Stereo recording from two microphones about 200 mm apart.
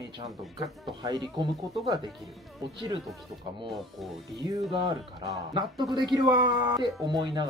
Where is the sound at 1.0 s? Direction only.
20° right (ahead or behind).